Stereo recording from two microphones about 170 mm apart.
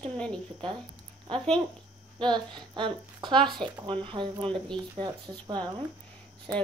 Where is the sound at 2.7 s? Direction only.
30° right (ahead or behind).